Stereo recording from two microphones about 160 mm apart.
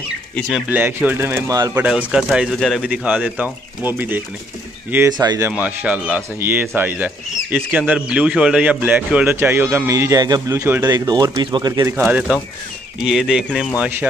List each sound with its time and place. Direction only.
0.7 s a man's voice: 10° right (ahead or behind)
5.1 s speech: 25° right (ahead or behind)
5.5 s a man's voice: 10° right (ahead or behind); by 11.9 s 25° right (ahead or behind)
12.0 s a man's voice: 5° right (ahead or behind)